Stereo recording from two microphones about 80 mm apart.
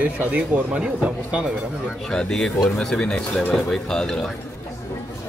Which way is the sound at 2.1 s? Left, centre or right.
Centre.